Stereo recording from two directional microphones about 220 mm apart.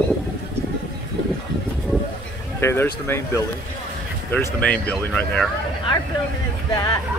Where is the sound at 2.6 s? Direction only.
10° left (ahead or behind).